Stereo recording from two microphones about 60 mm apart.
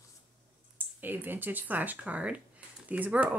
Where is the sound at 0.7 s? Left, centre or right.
Right.